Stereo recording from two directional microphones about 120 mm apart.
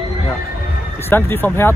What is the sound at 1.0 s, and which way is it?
Speech, 20° left (ahead or behind).